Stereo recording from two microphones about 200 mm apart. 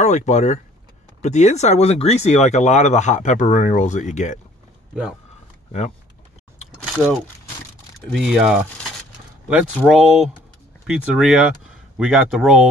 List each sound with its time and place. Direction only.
0.0 s speech: 35° left (ahead or behind)
8.1 s speech: centre (ahead or behind)
9.6 s speech: 5° right (ahead or behind)